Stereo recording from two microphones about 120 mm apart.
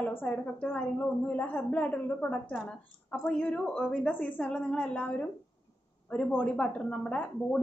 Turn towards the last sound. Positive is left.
turn(degrees=10)  # may be behind; listen again after turning